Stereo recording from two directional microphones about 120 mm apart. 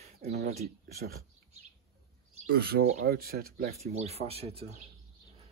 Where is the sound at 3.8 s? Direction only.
65° right (ahead or behind).